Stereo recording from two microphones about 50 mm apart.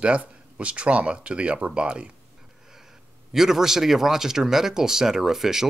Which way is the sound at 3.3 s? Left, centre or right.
Centre.